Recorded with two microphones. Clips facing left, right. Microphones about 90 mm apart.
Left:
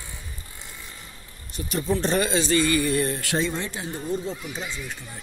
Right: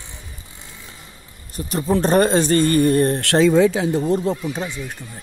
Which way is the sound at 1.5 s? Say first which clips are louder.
Right 4 dB; 35° right (ahead or behind).